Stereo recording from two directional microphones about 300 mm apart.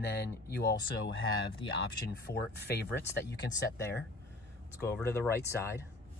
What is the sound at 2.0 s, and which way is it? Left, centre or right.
Speech, left.